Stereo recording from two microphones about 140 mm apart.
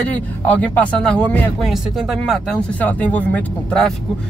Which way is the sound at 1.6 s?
Centre (ahead or behind).